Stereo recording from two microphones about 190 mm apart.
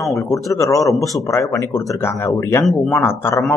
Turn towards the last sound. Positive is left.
turn(degrees=10)  # may be behind; listen again after turning